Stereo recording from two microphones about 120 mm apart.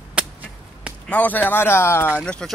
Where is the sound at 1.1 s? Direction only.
10° left (ahead or behind).